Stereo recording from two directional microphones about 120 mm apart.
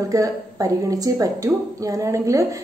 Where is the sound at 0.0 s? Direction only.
25° right (ahead or behind).